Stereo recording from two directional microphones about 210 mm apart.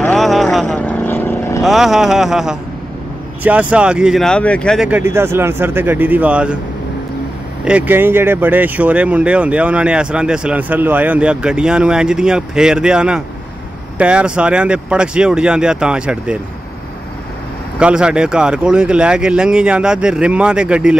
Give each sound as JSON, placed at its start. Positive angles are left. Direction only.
{"t": 0.0, "sound": "vehicle", "side_deg": 0}
{"t": 1.6, "sound": "speech", "side_deg": 0}
{"t": 4.8, "sound": "speech", "side_deg": -10}
{"t": 7.6, "sound": "speech", "side_deg": -5}
{"t": 17.7, "sound": "speech", "side_deg": -5}